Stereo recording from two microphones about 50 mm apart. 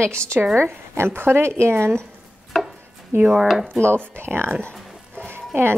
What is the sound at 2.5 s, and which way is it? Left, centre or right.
Chopping, centre.